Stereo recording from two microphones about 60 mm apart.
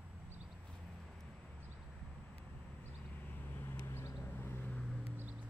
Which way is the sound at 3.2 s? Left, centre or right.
Left.